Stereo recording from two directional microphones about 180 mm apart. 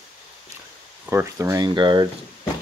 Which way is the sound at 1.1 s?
15° right (ahead or behind).